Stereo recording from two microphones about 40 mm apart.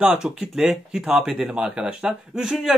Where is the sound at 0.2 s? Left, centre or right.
Right.